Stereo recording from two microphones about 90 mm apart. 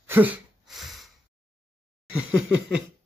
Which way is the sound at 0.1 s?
20° right (ahead or behind).